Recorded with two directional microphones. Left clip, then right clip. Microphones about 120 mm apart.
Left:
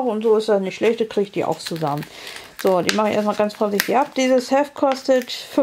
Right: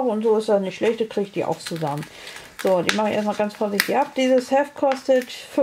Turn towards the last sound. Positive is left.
turn(degrees=35)  # may be behind; listen again after turning